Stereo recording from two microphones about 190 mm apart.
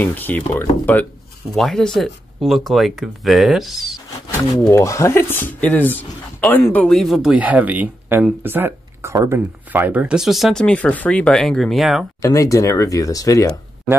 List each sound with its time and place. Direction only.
0.0 s speech: 10° left (ahead or behind)
4.6 s speech: 15° left (ahead or behind); by 12.1 s centre (ahead or behind)
12.2 s speech: 15° left (ahead or behind)